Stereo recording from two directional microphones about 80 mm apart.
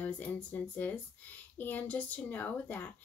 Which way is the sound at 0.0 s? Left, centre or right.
Left.